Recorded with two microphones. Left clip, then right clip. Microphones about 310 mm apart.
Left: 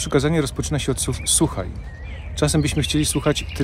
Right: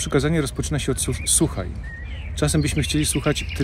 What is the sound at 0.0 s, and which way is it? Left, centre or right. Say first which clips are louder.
Speech: left 2 dB; centre.